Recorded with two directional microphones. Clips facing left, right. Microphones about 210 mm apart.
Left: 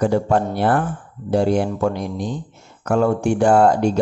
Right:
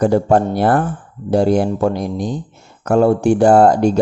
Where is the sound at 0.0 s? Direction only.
40° right (ahead or behind).